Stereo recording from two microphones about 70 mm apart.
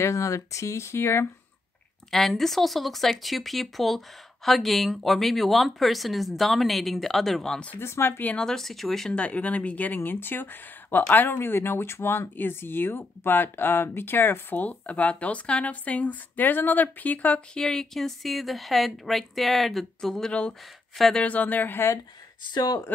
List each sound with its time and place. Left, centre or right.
0.0 s speech: left
2.0 s speech: centre
7.8 s speech: left
8.2 s speech: left
8.5 s speech: centre
9.1 s speech: centre
17.6 s speech: centre
21.2 s speech: left
22.5 s speech: left